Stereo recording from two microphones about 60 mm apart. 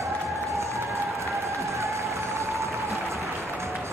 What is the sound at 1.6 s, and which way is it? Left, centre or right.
Music, right.